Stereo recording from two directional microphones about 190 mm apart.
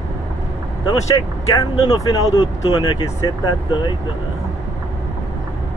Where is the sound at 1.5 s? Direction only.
20° left (ahead or behind).